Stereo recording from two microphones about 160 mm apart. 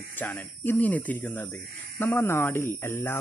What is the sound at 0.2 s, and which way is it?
Speech, 10° left (ahead or behind).